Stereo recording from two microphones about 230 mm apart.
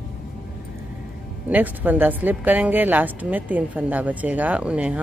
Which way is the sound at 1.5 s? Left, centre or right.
Centre.